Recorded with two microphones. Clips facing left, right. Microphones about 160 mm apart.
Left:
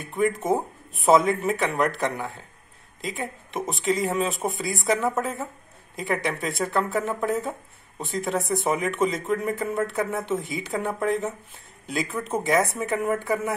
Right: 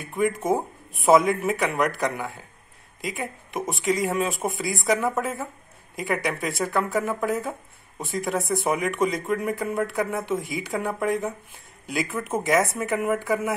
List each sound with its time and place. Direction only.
0.1 s speech: centre (ahead or behind)
3.1 s speech: centre (ahead or behind)
11.8 s speech: 10° right (ahead or behind)
12.9 s speech: 5° right (ahead or behind)